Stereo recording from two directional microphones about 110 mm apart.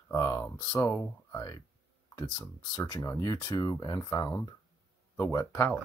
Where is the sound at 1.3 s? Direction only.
30° left (ahead or behind).